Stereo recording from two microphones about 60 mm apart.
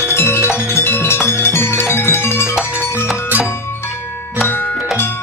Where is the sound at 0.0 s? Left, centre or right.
Left.